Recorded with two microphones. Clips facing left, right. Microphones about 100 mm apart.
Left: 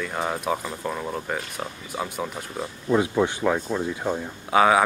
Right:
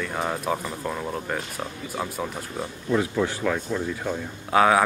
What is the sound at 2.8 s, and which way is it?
Speech, 20° left (ahead or behind).